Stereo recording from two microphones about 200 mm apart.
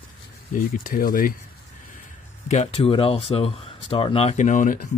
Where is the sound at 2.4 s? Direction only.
35° left (ahead or behind).